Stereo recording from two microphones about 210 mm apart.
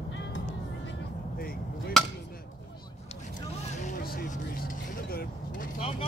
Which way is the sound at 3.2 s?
35° left (ahead or behind).